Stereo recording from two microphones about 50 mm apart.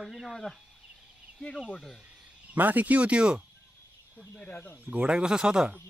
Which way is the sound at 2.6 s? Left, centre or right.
Right.